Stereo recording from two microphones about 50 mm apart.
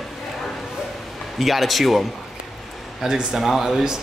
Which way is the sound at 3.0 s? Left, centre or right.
Centre.